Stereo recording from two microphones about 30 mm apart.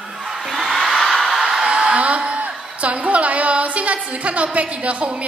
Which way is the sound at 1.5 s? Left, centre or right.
Right.